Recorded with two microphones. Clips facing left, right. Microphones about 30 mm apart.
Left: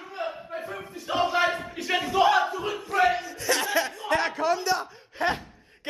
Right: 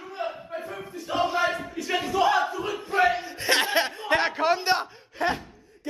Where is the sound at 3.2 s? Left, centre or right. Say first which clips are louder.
Right 3 dB; right.